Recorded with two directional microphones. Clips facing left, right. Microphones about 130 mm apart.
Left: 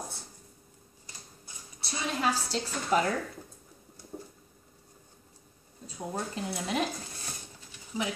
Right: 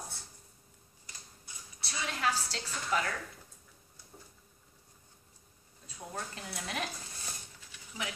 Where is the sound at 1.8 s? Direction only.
30° left (ahead or behind).